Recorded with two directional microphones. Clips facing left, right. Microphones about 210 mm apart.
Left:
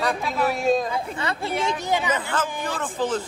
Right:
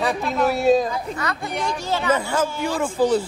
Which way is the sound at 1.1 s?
30° left (ahead or behind).